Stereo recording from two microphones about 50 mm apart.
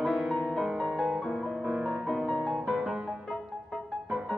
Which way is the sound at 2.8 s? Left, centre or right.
Right.